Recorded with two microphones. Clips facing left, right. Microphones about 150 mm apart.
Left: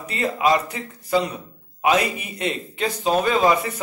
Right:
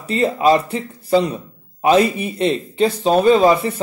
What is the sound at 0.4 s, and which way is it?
A man's voice, 30° right (ahead or behind).